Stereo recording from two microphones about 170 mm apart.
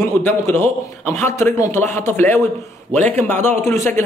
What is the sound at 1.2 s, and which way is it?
A man's voice, 15° left (ahead or behind).